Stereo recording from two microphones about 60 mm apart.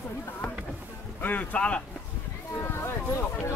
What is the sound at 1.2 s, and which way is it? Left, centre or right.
Speech, left.